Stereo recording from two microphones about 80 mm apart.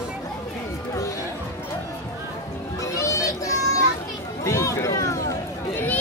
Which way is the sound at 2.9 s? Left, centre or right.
Left.